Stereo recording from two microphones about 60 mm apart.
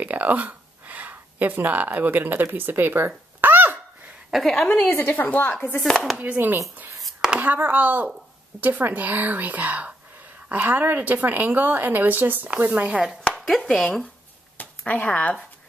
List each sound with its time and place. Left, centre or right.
0.0 s a sound: right
4.3 s a woman's voice: centre
4.9 s a woman's voice: left
5.8 s a woman's voice: centre
6.3 s speech: right
7.0 s a sound: centre
7.3 s speech: right
12.6 s speech: right
13.3 s a sound: centre
14.6 s speech: left